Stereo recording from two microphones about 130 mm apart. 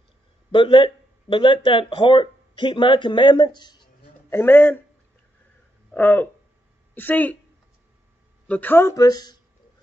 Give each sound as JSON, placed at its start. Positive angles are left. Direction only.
{"t": 0.5, "sound": "speech", "side_deg": 40}
{"t": 4.3, "sound": "speech", "side_deg": 15}
{"t": 5.9, "sound": "speech", "side_deg": 15}
{"t": 8.5, "sound": "speech", "side_deg": 15}